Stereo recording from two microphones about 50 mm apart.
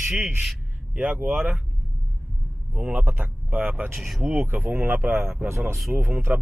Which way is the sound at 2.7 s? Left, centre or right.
Right.